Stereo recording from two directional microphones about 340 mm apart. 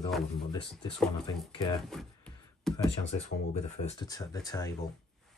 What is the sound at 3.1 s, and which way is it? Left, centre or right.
Speech, centre.